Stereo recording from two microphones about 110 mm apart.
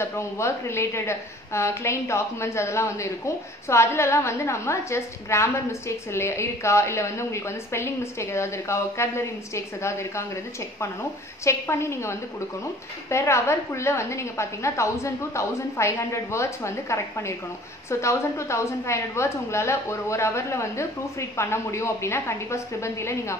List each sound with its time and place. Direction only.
0.0 s a woman's voice: 25° left (ahead or behind)